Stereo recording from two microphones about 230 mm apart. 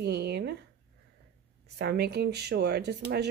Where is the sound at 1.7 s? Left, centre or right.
Right.